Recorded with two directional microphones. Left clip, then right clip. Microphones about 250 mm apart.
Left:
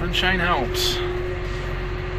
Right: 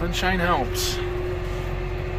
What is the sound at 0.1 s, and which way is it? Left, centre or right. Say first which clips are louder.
Speech: left 3 dB; centre.